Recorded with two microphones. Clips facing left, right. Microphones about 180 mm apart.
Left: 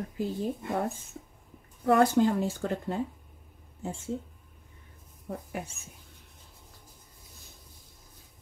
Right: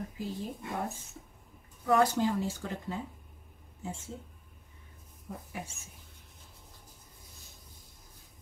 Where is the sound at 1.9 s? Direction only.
55° left (ahead or behind).